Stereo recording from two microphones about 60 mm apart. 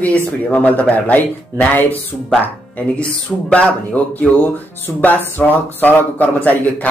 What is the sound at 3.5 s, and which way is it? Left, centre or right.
Speech, left.